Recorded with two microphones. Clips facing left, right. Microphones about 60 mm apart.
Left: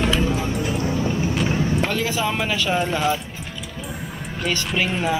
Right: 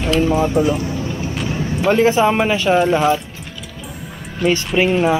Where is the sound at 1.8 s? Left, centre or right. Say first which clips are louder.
Right 10 dB; right.